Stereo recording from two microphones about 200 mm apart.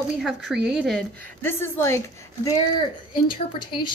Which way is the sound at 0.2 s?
Centre (ahead or behind).